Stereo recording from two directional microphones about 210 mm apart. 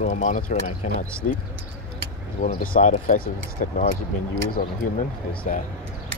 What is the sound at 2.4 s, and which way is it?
Speech, 40° left (ahead or behind).